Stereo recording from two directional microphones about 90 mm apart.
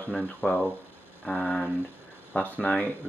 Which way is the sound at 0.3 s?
20° left (ahead or behind).